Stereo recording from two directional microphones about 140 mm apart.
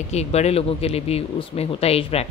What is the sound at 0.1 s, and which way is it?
A woman's voice, 50° left (ahead or behind).